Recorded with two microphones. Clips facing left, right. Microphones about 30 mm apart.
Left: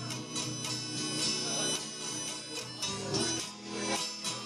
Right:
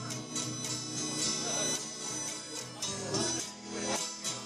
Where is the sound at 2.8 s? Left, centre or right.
Left.